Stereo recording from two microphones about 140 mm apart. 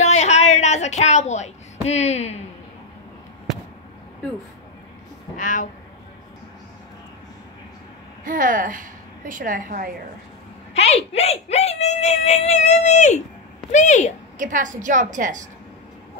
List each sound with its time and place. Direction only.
0.0 s a sound: 55° left (ahead or behind)
5.4 s speech: 65° left (ahead or behind)
8.2 s a woman's voice: 70° right (ahead or behind)
10.7 s speech: 50° left (ahead or behind)
14.4 s a woman's voice: 65° right (ahead or behind)